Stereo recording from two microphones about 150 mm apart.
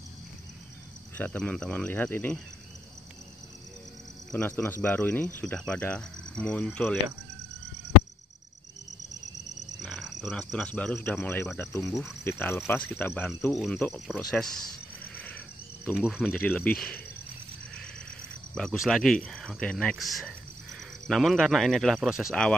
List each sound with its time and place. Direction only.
1.1 s speech: 10° left (ahead or behind)
4.3 s speech: 10° left (ahead or behind)
9.8 s speech: centre (ahead or behind)
13.5 s speech: 5° left (ahead or behind)
15.1 s wild animals: 10° left (ahead or behind)
15.9 s speech: 5° right (ahead or behind)
16.3 s speech: 10° left (ahead or behind)
18.5 s speech: 5° left (ahead or behind)